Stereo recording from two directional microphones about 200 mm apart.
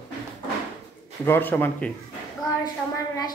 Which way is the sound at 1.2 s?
10° left (ahead or behind).